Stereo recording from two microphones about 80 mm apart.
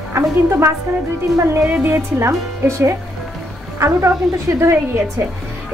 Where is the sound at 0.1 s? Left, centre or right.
Right.